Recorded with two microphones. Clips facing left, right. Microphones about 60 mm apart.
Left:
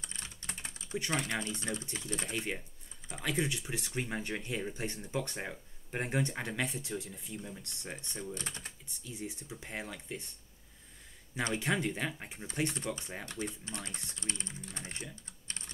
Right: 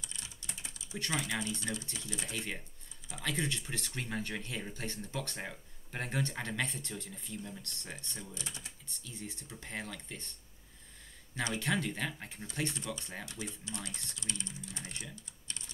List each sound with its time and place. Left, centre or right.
0.0 s typing: left
1.1 s speech: left
1.5 s speech: left
3.3 s speech: centre
8.4 s speech: left
8.8 s speech: centre
11.5 s speech: centre
12.5 s speech: left
15.4 s typing: left